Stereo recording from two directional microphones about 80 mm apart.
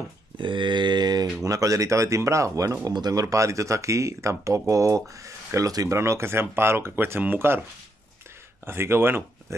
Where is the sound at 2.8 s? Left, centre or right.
Right.